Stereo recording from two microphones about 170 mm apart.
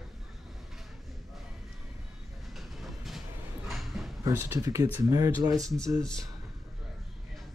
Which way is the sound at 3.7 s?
Centre (ahead or behind).